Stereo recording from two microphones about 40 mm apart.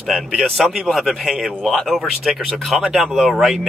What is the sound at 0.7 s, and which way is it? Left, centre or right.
Speech, centre.